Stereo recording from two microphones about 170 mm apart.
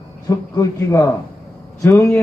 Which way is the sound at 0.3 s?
20° left (ahead or behind).